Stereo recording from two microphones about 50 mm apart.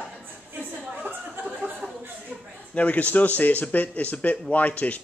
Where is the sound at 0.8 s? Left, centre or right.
Right.